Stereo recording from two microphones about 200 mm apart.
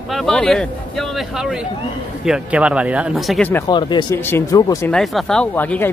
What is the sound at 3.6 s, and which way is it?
Speech, 20° left (ahead or behind).